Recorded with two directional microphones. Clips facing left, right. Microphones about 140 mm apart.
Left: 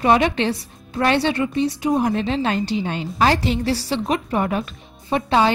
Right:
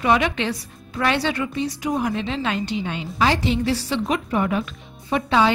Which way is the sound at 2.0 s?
40° left (ahead or behind).